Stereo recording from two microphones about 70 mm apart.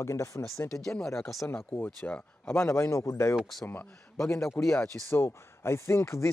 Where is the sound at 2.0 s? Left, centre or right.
Left.